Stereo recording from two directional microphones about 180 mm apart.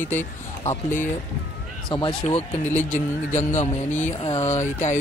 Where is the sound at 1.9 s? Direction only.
25° left (ahead or behind).